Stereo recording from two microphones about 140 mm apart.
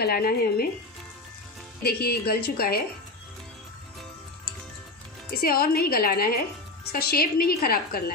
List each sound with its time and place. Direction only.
0.1 s a woman's voice: 90° left
1.9 s a woman's voice: 90° left
5.3 s a woman's voice: 90° left